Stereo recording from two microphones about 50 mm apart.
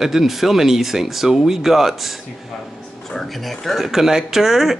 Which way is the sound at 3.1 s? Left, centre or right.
Centre.